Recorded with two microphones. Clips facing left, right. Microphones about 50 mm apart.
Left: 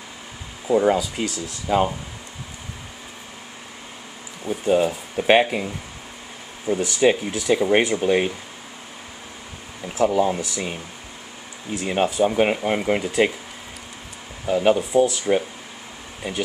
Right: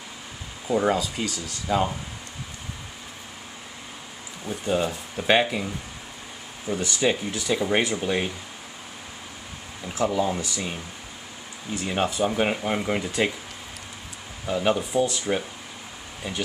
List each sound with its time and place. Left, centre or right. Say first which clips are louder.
0.7 s speech: left 4 dB; left
1.7 s speech: left 4 dB; centre
4.5 s speech: left 6 dB; centre
5.2 s speech: left 4 dB; left
6.7 s speech: left 6 dB; centre
10.0 s speech: left 5 dB; centre
11.9 s speech: left 5 dB; centre
14.4 s speech: left 5 dB; centre